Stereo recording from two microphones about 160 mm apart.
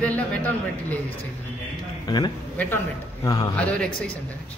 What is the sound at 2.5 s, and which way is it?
A man's voice, 10° left (ahead or behind).